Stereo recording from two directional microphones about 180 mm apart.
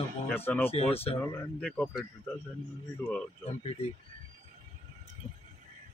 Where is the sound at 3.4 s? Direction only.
35° left (ahead or behind).